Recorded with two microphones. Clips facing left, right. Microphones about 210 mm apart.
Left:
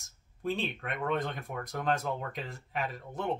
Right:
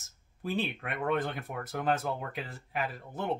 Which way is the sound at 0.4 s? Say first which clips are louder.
Even; 5° right (ahead or behind).